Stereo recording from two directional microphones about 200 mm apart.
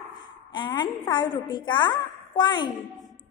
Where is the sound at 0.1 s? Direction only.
20° left (ahead or behind).